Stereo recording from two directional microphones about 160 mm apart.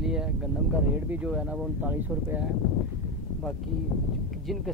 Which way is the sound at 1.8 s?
10° right (ahead or behind).